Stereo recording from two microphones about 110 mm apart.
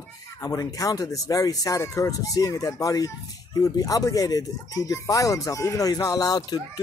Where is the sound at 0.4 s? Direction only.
30° left (ahead or behind).